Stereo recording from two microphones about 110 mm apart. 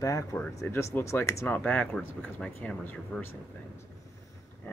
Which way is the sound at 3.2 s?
20° left (ahead or behind).